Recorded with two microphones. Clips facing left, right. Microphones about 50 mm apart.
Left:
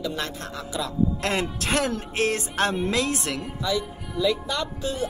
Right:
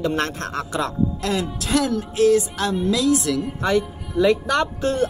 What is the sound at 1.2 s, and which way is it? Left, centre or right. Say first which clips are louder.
Speech: right 2 dB; left.